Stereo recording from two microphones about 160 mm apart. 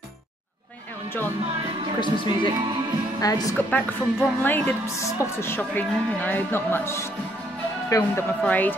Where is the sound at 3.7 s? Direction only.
10° left (ahead or behind).